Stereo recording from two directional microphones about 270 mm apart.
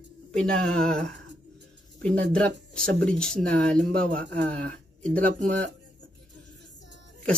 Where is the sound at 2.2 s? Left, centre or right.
Centre.